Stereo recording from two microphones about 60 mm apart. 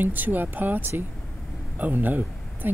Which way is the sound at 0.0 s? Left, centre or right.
Right.